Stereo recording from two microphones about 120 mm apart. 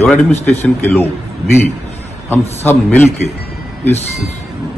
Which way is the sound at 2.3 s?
15° left (ahead or behind).